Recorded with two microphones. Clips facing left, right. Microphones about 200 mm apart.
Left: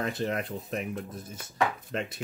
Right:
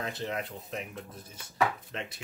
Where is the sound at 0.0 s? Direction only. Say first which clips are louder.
Left 4 dB; 50° left (ahead or behind).